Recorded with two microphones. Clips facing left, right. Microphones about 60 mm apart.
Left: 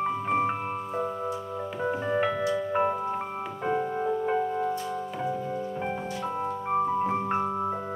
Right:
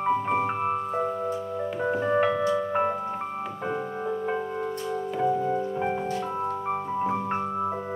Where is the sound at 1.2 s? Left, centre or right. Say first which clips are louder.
Right 3 dB; centre.